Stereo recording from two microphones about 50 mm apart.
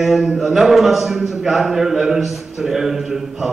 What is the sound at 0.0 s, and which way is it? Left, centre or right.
A man's voice, centre.